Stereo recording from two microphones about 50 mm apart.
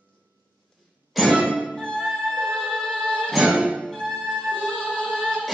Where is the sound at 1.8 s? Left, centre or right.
Centre.